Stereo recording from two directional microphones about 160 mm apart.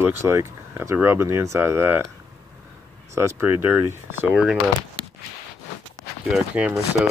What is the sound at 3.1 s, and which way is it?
Speech, 15° right (ahead or behind).